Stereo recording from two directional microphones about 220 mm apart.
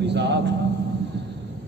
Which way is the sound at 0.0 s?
50° right (ahead or behind).